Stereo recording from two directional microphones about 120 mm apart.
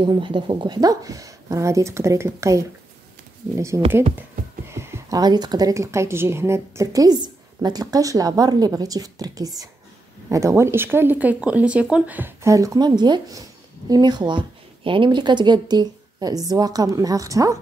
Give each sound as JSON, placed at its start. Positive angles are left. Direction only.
{"t": 0.0, "sound": "speech", "side_deg": -45}
{"t": 4.6, "sound": "a sound", "side_deg": -20}
{"t": 5.2, "sound": "speech", "side_deg": -35}
{"t": 12.4, "sound": "speech", "side_deg": -30}